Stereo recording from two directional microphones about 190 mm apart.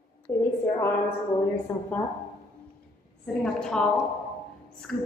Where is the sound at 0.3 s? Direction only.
10° left (ahead or behind).